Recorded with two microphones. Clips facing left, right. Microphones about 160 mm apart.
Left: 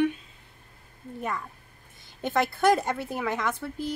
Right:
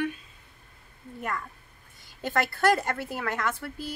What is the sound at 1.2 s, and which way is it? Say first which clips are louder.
A woman's voice: left 1 dB; 15° left (ahead or behind).